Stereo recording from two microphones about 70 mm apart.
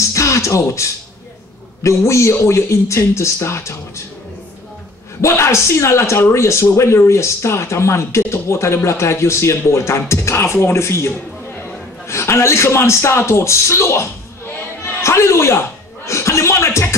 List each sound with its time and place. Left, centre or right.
0.1 s a man's voice: left
5.2 s a man's voice: left
16.1 s a sound: left